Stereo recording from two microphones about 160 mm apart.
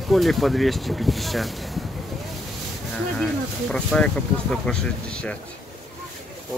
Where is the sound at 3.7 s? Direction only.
5° left (ahead or behind).